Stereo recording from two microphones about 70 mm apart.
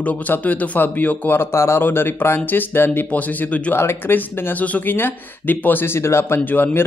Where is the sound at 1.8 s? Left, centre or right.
Left.